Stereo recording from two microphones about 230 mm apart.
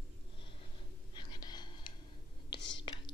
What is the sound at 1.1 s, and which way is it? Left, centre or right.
Whispering, centre.